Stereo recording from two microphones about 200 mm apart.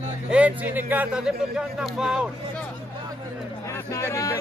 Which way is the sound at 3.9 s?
15° left (ahead or behind).